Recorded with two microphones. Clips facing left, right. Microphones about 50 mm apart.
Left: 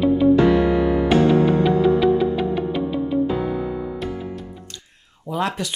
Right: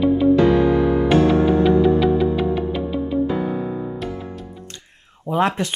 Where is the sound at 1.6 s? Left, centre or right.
Centre.